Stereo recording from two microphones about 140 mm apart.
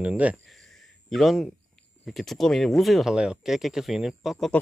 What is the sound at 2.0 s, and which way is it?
Speech, centre (ahead or behind).